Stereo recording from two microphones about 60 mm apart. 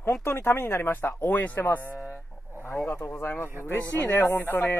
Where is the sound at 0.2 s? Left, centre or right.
Left.